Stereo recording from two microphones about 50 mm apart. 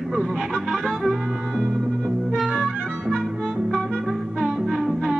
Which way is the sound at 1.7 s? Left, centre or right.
Centre.